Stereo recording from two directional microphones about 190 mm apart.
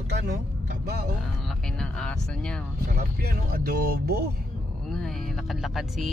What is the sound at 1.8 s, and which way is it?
Speech, 5° left (ahead or behind).